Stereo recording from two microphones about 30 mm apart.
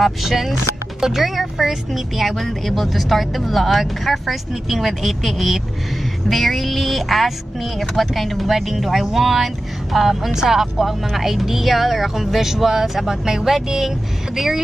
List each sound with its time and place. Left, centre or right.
0.0 s a woman's voice: centre